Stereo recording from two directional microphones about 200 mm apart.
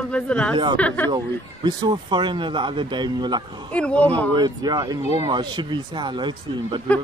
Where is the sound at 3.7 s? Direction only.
5° left (ahead or behind).